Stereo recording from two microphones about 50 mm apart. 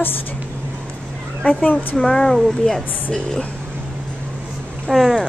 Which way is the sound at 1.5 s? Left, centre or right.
Left.